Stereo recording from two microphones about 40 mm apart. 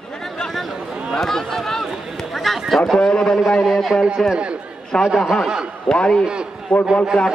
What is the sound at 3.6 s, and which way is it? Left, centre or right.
Speech, centre.